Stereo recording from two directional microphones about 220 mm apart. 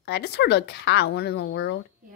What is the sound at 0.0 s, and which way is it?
A woman's voice, 50° left (ahead or behind).